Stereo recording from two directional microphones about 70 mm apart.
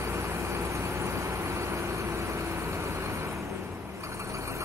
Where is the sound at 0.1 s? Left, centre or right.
Right.